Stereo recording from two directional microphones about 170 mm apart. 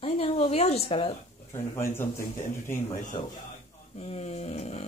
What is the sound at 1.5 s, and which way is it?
Speech, 15° left (ahead or behind).